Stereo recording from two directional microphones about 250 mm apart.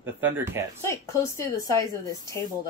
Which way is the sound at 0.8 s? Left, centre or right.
Centre.